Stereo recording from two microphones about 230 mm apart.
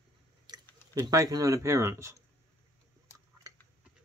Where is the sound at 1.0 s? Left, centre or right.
Centre.